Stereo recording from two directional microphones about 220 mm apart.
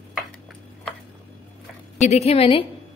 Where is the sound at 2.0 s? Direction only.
30° left (ahead or behind).